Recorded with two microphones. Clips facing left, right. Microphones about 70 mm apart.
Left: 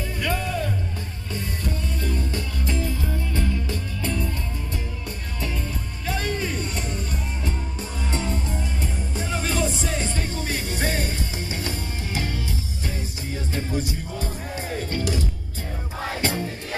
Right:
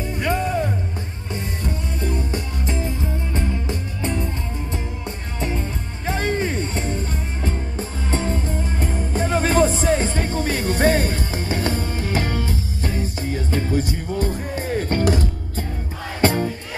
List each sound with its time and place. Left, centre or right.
0.0 s music: right
5.4 s music: right